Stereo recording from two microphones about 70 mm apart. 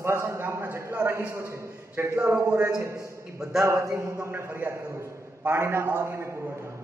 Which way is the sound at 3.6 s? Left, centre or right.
Right.